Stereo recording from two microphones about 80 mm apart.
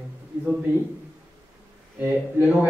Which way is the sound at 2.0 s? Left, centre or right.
Right.